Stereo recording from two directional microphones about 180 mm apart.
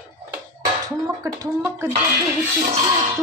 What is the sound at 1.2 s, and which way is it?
Speech, 15° right (ahead or behind).